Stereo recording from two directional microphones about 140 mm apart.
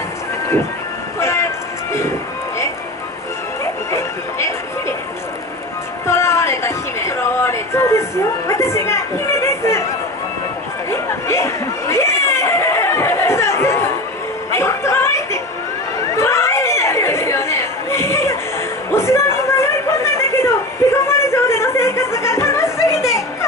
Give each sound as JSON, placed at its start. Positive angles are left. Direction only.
{"t": 1.2, "sound": "music", "side_deg": 20}
{"t": 3.9, "sound": "music", "side_deg": 20}
{"t": 6.0, "sound": "music", "side_deg": 20}
{"t": 8.5, "sound": "speech", "side_deg": 20}
{"t": 10.9, "sound": "a sound", "side_deg": 20}
{"t": 14.5, "sound": "chuckle", "side_deg": 20}
{"t": 16.0, "sound": "chatter", "side_deg": 20}
{"t": 18.9, "sound": "a sound", "side_deg": 20}